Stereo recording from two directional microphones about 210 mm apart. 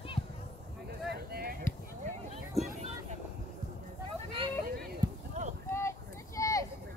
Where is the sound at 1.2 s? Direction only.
45° right (ahead or behind).